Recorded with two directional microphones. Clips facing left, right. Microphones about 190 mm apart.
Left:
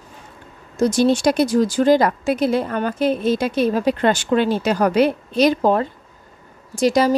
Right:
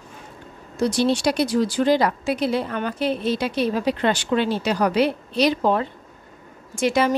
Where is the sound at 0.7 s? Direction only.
45° left (ahead or behind).